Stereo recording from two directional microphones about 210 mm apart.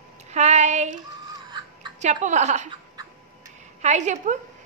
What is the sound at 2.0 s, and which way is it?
Speech, 35° right (ahead or behind).